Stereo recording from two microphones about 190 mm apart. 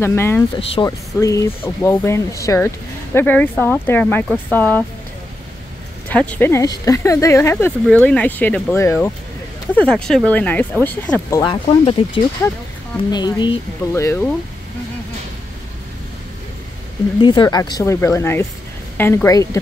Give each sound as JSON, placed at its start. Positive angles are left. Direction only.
{"t": 0.0, "sound": "speech", "side_deg": 10}
{"t": 6.0, "sound": "speech", "side_deg": 5}
{"t": 11.2, "sound": "speech", "side_deg": 20}
{"t": 17.2, "sound": "speech", "side_deg": 25}